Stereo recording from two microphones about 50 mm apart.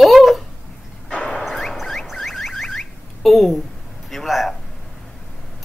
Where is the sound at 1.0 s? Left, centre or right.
Left.